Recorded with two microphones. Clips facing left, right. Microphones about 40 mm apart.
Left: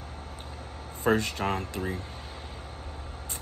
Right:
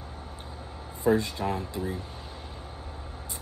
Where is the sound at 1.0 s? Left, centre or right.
Left.